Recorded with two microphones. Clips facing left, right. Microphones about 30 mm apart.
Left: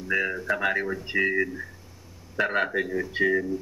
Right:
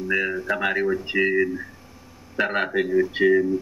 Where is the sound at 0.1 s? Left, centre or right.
Centre.